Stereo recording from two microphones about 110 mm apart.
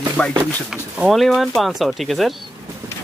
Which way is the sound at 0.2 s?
15° left (ahead or behind).